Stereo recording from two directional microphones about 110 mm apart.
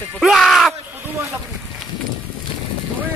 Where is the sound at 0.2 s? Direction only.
Centre (ahead or behind).